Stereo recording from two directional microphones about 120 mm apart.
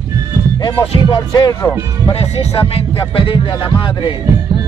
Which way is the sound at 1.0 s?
35° left (ahead or behind).